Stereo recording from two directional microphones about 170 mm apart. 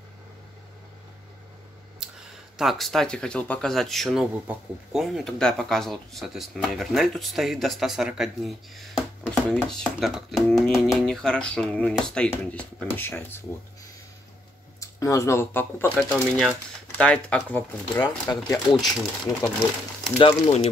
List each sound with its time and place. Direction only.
2.0 s a sound: 5° right (ahead or behind)
2.5 s speech: centre (ahead or behind)
14.8 s speech: 20° left (ahead or behind)
18.0 s speech: 25° left (ahead or behind)
20.2 s speech: 30° left (ahead or behind)